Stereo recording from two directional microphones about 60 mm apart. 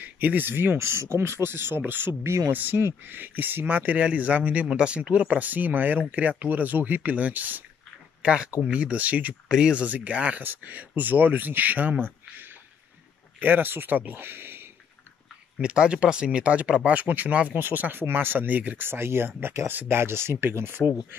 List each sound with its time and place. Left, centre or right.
0.0 s speech: right
9.5 s speech: centre
10.4 s speech: right
15.6 s speech: centre
18.9 s speech: right